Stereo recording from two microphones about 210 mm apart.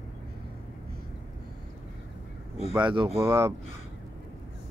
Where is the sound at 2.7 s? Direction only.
20° right (ahead or behind).